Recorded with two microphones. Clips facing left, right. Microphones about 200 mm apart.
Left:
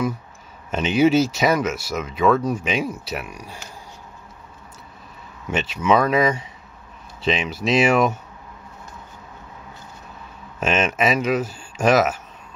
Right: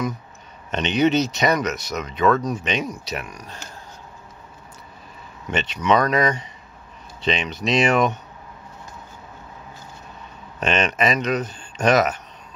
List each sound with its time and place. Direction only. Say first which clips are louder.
0.7 s speech: left 2 dB; 5° left (ahead or behind)
5.5 s speech: left 1 dB; 5° left (ahead or behind)
10.6 s speech: left 1 dB; 5° left (ahead or behind)